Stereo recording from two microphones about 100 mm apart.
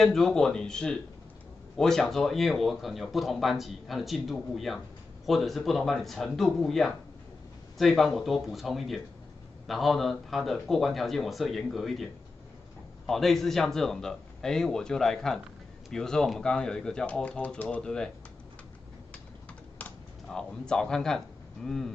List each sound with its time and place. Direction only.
0.0 s speech: 5° left (ahead or behind)
19.8 s computer keyboard: 15° left (ahead or behind)
20.2 s speech: 5° left (ahead or behind)